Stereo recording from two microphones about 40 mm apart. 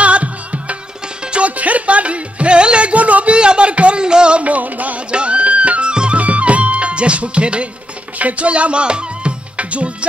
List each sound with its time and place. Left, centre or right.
0.0 s music: right
3.3 s music: right
5.1 s music: right